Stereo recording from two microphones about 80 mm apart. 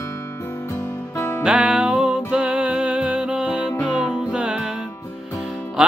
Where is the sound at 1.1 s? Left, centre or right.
Left.